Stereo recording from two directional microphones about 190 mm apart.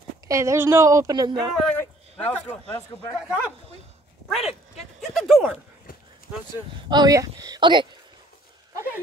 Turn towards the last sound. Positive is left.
turn(degrees=-25)  # may be behind; listen again after turning